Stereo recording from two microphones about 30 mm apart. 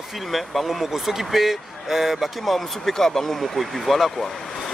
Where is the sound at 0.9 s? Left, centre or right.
Centre.